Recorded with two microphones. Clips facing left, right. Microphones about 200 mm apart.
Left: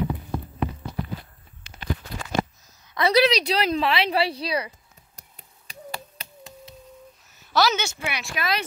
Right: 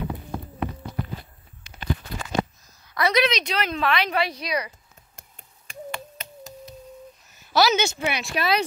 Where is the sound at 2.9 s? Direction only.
30° left (ahead or behind).